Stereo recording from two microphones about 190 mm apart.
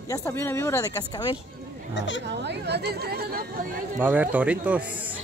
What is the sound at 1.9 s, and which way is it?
Speech, 70° left (ahead or behind).